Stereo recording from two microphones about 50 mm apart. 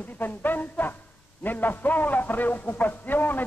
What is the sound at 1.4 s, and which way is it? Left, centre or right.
Music, left.